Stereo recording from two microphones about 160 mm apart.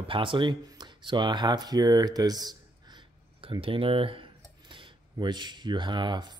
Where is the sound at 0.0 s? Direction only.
30° right (ahead or behind).